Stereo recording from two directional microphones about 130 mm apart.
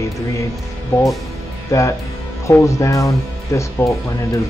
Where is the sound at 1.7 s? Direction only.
25° left (ahead or behind).